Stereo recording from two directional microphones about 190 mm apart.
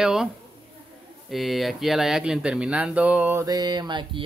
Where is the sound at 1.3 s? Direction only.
Centre (ahead or behind); by 4.2 s 25° right (ahead or behind).